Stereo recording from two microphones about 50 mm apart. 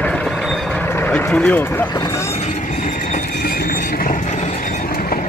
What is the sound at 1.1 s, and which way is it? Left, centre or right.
Speech, centre.